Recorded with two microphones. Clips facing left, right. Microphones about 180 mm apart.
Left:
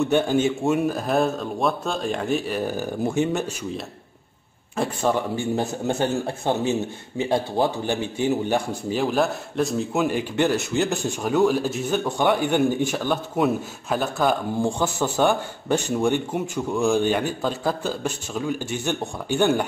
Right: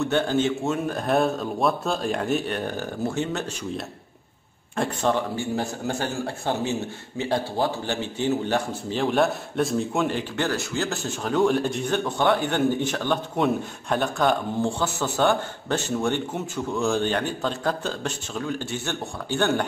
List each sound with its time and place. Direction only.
0.1 s a man's voice: 10° left (ahead or behind)
4.8 s a man's voice: 5° left (ahead or behind)
5.3 s a man's voice: 20° left (ahead or behind)